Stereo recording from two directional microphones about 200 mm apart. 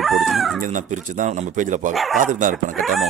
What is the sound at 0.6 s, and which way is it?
Speech, 40° right (ahead or behind).